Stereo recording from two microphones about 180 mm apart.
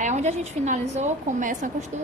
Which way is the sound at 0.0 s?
40° right (ahead or behind).